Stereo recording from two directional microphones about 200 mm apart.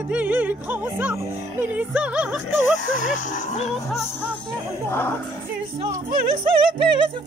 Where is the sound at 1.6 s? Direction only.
5° right (ahead or behind).